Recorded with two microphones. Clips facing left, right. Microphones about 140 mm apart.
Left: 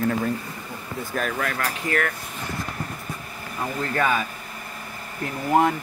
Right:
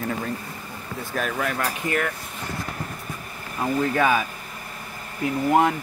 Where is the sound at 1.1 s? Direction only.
Centre (ahead or behind).